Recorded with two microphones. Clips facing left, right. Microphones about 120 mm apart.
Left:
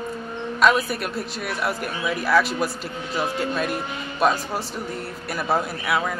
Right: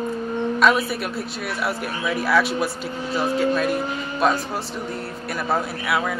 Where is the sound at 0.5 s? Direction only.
Centre (ahead or behind).